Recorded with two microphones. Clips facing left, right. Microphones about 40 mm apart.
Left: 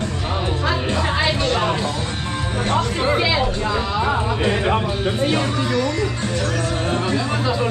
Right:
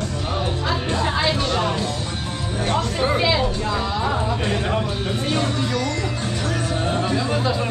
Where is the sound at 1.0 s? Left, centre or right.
Centre.